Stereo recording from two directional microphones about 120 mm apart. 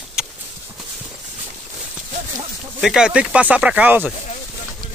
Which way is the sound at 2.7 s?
5° right (ahead or behind).